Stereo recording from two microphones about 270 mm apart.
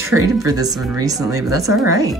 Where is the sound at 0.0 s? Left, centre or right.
Centre.